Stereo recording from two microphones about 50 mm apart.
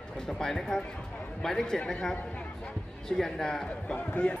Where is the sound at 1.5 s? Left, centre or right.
Centre.